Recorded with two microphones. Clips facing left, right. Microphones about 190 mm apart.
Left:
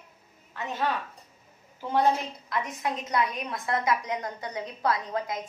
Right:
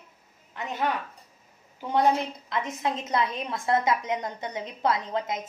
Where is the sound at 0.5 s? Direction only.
15° right (ahead or behind).